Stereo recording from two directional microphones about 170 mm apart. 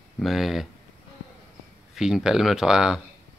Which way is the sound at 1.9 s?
5° right (ahead or behind).